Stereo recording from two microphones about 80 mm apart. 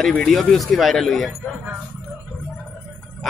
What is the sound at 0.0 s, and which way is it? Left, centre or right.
Speech, centre.